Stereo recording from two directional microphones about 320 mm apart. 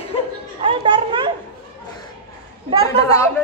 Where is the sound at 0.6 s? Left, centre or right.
Centre.